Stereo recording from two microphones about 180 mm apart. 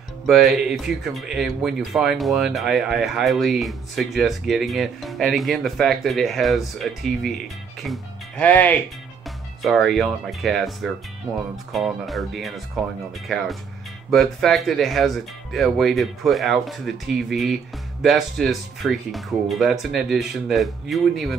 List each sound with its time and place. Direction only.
0.3 s speech: centre (ahead or behind)